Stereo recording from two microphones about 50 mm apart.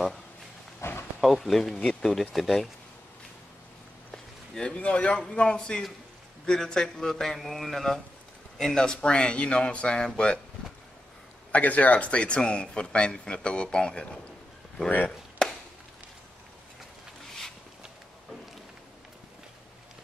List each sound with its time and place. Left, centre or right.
0.8 s a sound: left
1.2 s speech: centre
4.1 s a man's voice: centre
11.5 s speech: left